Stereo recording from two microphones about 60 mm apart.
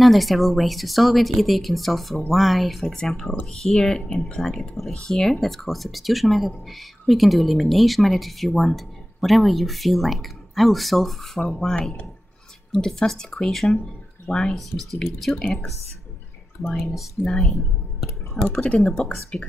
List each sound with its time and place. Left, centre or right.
0.0 s speech: centre
3.0 s speech: centre
16.7 s speech: centre
18.4 s speech: centre